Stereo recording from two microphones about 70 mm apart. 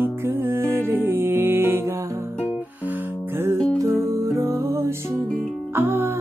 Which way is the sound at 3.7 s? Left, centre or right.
Right.